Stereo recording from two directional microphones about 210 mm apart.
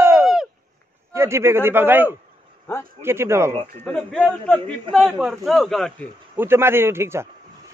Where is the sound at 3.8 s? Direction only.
5° left (ahead or behind).